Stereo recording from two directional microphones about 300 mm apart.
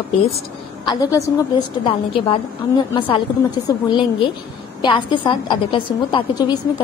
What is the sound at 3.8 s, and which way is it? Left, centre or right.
A woman's voice, centre.